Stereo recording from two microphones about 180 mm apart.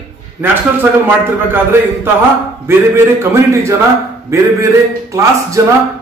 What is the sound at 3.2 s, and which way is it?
A man's voice, 15° right (ahead or behind).